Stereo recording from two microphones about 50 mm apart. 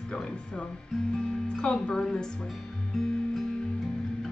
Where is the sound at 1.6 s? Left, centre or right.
Centre.